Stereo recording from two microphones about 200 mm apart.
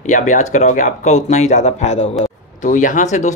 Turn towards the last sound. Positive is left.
turn(degrees=35)  # may be behind; listen again after turning